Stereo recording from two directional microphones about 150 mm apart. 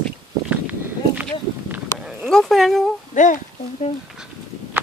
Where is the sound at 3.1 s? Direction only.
55° left (ahead or behind).